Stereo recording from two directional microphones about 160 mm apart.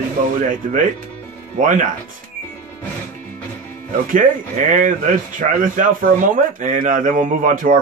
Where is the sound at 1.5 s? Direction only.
55° right (ahead or behind).